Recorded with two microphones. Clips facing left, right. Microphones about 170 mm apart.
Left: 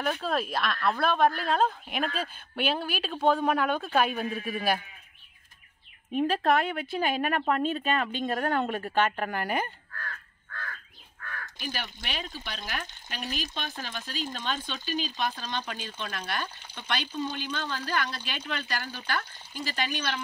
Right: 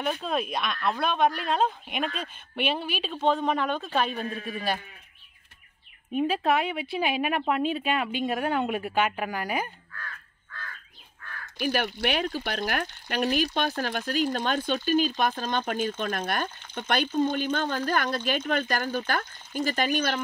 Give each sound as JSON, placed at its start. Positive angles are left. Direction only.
{"t": 0.0, "sound": "speech", "side_deg": 0}
{"t": 6.1, "sound": "speech", "side_deg": 0}
{"t": 11.6, "sound": "speech", "side_deg": -60}